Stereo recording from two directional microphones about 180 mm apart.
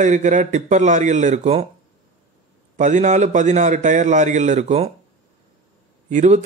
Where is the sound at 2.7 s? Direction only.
45° right (ahead or behind).